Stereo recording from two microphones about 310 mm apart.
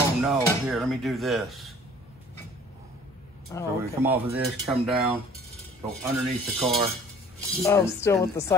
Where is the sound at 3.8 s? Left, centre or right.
Centre.